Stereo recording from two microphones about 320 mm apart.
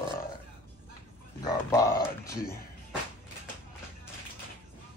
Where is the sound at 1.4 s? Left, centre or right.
Centre.